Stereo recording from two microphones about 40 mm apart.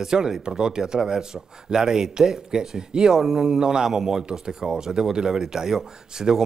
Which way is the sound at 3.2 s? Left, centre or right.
Centre.